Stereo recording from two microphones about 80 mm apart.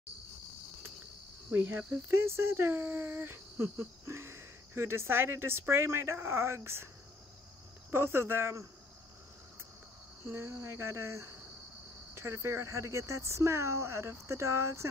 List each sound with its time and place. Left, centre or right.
1.5 s speech: right
2.1 s speech: right
7.9 s speech: right
10.2 s speech: right